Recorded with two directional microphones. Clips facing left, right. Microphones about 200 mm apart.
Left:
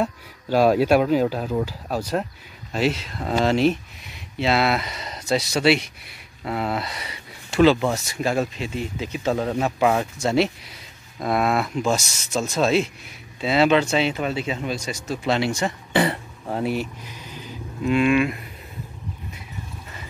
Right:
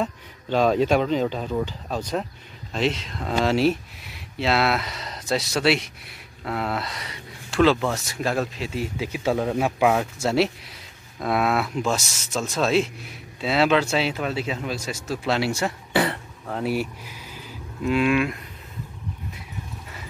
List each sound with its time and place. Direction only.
0.0 s speech: 10° left (ahead or behind)
16.1 s throat clearing: 20° left (ahead or behind)
16.6 s speech: 5° right (ahead or behind)